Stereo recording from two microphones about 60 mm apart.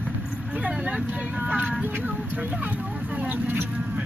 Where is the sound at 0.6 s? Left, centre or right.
Right.